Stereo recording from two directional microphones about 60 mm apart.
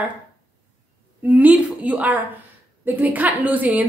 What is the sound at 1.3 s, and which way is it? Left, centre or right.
A woman's voice, right.